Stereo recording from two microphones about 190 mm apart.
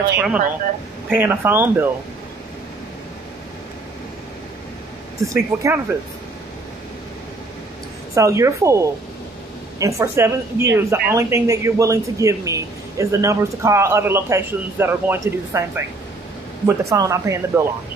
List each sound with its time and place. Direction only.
0.1 s a woman's voice: 5° right (ahead or behind)
5.3 s a woman's voice: 15° right (ahead or behind)
8.1 s a woman's voice: 15° right (ahead or behind)